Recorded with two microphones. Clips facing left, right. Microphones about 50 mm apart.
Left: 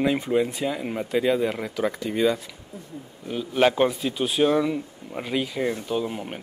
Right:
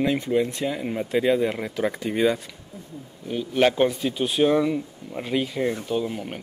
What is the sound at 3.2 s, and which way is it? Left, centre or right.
Speech, centre.